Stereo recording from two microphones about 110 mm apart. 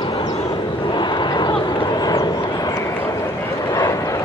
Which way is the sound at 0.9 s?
45° left (ahead or behind).